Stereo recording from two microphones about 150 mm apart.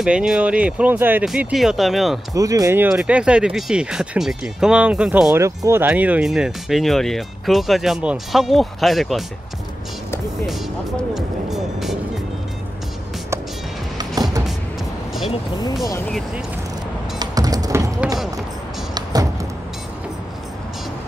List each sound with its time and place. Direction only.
0.0 s speech: 5° right (ahead or behind)
2.3 s speech: 25° right (ahead or behind)
2.9 s speech: 5° right (ahead or behind)
5.3 s speech: 20° right (ahead or behind); by 9.2 s centre (ahead or behind)
10.4 s speech: centre (ahead or behind)
13.9 s music: 25° right (ahead or behind)
17.2 s music: 25° right (ahead or behind)